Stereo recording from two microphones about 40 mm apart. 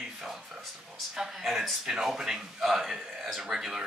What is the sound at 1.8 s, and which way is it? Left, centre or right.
Speech, centre.